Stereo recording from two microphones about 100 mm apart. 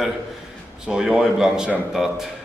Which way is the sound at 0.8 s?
5° right (ahead or behind).